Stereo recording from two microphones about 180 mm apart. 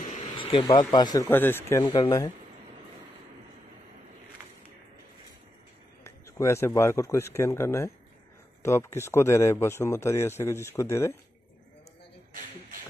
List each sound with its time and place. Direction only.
0.0 s vehicle: 35° left (ahead or behind)
0.9 s speech: 20° left (ahead or behind)
6.0 s speech: 15° left (ahead or behind)